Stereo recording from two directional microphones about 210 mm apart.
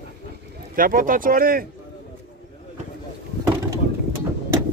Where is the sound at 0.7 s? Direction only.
40° right (ahead or behind).